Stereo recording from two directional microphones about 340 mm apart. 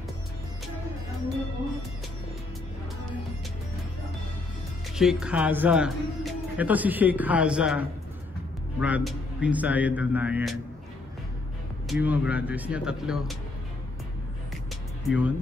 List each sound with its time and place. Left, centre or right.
4.9 s speech: centre
11.9 s speech: centre
15.0 s speech: centre